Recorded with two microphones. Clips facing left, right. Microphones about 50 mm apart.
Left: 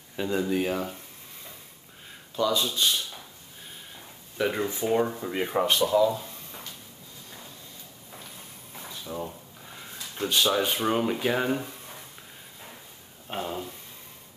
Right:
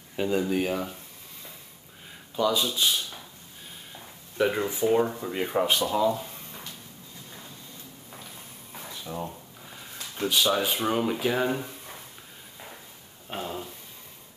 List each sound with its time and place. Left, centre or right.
0.1 s speech: centre
2.3 s speech: centre
4.4 s speech: centre
5.9 s speech: centre
9.0 s speech: centre
13.3 s speech: centre